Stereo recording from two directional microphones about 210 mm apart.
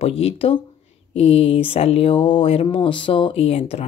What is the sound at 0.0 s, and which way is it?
Speech, 30° left (ahead or behind).